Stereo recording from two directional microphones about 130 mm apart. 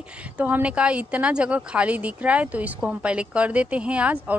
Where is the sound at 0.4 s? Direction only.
10° right (ahead or behind).